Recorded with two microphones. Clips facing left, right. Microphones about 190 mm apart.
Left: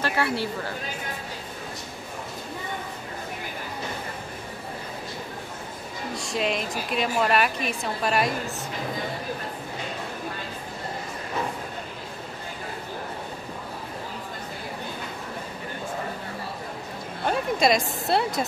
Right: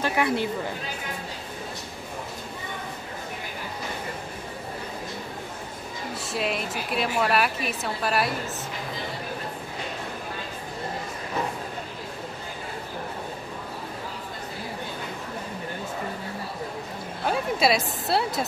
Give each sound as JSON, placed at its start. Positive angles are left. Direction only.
{"t": 0.0, "sound": "speech", "side_deg": -15}
{"t": 6.1, "sound": "a woman's voice", "side_deg": -5}
{"t": 17.2, "sound": "a sound", "side_deg": -5}